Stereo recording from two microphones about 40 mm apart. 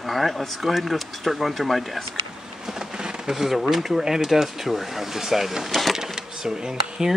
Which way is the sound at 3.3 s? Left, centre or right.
Centre.